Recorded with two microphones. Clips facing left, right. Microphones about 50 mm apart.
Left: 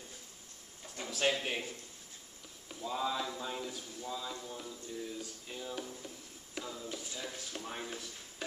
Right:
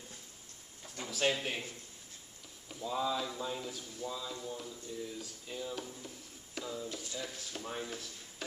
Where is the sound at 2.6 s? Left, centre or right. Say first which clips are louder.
Right 1 dB; centre.